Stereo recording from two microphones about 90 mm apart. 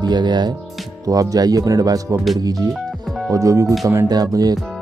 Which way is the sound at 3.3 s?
35° right (ahead or behind).